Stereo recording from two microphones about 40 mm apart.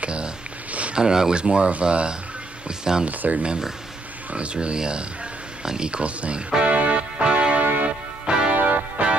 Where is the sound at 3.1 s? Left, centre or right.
Right.